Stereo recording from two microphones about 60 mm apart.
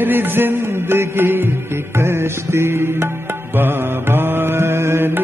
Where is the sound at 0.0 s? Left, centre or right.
Right.